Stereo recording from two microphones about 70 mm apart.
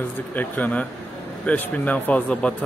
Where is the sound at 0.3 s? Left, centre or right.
Left.